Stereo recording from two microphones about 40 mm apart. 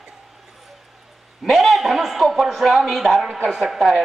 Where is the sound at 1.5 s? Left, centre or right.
Centre.